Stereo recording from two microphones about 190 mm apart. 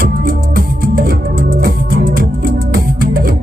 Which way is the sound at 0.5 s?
50° right (ahead or behind).